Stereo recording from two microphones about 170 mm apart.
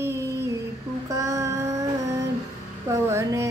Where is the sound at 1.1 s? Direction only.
15° right (ahead or behind).